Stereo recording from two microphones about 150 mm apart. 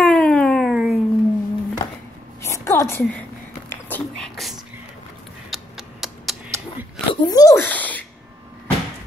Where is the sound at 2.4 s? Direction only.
15° left (ahead or behind).